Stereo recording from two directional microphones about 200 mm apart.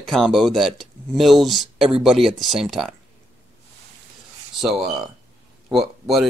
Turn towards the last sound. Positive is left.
turn(degrees=0)  # may be behind; listen again after turning